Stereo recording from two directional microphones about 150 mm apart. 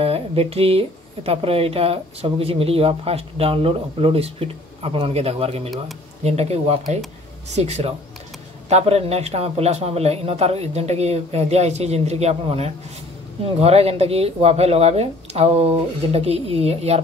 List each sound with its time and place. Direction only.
0.0 s speech: 40° right (ahead or behind)